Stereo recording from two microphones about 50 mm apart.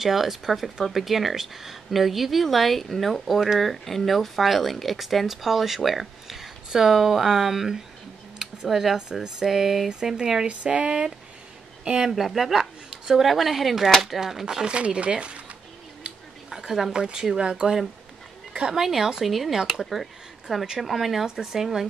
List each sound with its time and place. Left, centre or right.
0.0 s speech: centre
8.4 s a sound: centre
9.2 s speech: centre
10.4 s speech: right
12.1 s speech: centre
14.4 s speech: centre
16.4 s speech: centre
18.8 s speech: centre